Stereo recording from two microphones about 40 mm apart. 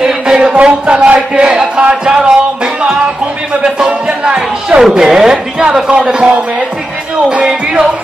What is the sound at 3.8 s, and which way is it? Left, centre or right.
Speech, right.